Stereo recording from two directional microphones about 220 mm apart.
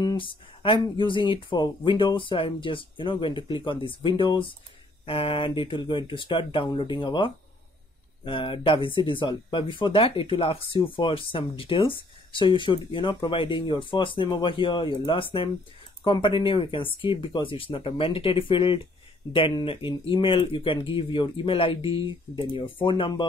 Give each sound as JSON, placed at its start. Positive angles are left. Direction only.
{"t": 0.0, "sound": "speech", "side_deg": 20}